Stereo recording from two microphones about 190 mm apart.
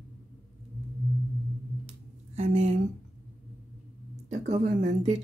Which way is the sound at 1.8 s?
30° right (ahead or behind).